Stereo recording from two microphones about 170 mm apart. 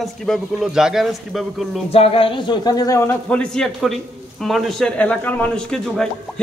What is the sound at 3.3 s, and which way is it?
A man's voice, 5° left (ahead or behind).